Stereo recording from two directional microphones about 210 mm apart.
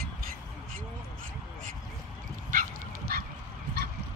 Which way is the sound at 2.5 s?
45° right (ahead or behind).